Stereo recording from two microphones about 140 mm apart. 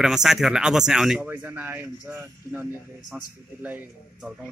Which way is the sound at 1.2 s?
15° right (ahead or behind).